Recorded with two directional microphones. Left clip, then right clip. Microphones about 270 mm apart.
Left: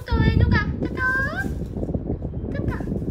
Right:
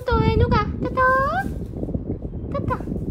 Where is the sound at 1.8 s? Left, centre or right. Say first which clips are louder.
Left 1 dB; right.